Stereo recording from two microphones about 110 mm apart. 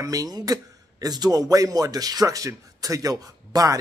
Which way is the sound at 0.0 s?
35° right (ahead or behind).